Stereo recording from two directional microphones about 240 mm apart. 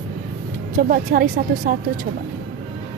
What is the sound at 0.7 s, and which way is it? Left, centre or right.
Speech, right.